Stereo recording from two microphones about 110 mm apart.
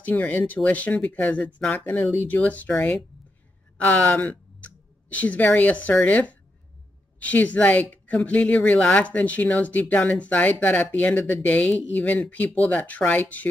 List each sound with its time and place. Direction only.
0.0 s speech: 15° left (ahead or behind)
3.8 s speech: 15° left (ahead or behind)